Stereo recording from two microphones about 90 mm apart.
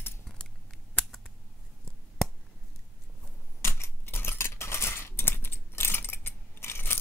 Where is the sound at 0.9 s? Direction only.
10° left (ahead or behind).